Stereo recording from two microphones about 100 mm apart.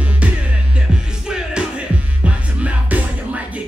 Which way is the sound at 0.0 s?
15° right (ahead or behind).